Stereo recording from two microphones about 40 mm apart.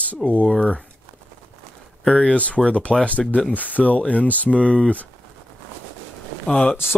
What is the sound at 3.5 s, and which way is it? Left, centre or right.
Speech, left.